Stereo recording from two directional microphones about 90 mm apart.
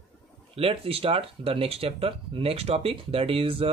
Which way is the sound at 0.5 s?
90° right.